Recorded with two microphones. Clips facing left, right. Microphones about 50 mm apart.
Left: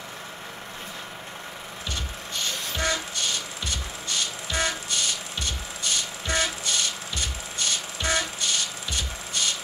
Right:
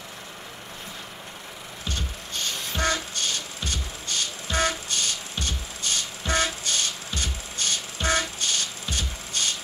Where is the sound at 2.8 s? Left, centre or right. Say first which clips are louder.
Right 2 dB; right.